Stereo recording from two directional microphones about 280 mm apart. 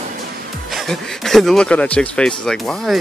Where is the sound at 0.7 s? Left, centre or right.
Centre.